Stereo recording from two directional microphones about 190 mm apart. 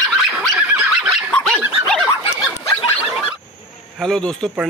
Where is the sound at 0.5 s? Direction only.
5° right (ahead or behind).